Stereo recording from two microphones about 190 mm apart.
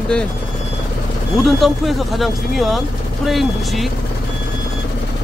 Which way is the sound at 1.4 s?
Centre (ahead or behind).